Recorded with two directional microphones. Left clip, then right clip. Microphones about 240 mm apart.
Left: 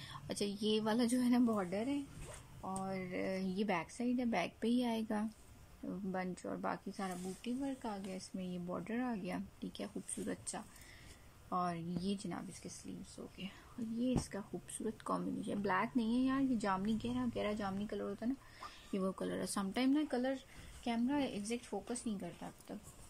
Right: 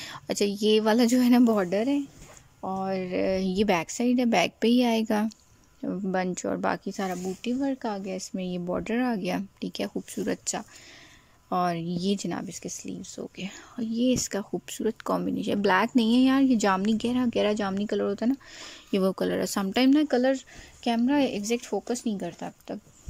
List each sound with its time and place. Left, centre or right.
0.0 s speech: right